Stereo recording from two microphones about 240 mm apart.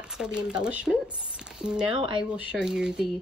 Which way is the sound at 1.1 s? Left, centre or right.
Centre.